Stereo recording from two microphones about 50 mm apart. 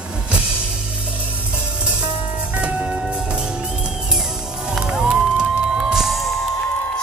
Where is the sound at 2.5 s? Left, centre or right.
Right.